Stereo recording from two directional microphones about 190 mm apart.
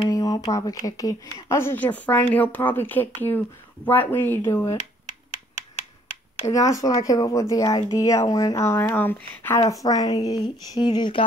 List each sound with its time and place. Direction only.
0.1 s speech: 20° left (ahead or behind)
6.5 s speech: 15° left (ahead or behind)